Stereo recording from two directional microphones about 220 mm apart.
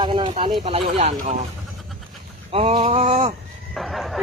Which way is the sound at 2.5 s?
25° right (ahead or behind).